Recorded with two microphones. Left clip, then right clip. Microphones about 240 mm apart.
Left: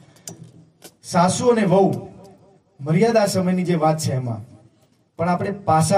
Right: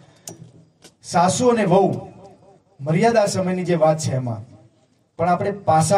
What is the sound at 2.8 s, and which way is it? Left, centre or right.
A man's voice, right.